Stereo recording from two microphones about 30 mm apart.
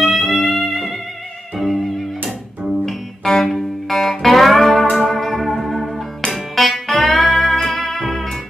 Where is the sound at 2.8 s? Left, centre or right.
Centre.